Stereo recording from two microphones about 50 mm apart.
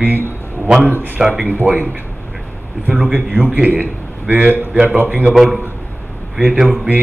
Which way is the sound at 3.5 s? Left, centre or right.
Right.